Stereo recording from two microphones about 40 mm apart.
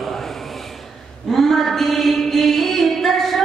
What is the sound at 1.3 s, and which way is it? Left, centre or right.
Music, centre.